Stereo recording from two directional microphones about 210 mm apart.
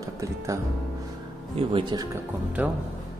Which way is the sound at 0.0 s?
15° right (ahead or behind).